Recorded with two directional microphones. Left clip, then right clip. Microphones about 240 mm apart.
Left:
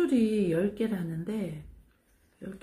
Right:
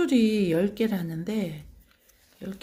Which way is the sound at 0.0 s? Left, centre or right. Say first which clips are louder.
Right 3 dB; right.